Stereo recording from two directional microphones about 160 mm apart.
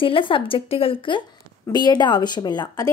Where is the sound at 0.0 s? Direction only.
35° left (ahead or behind).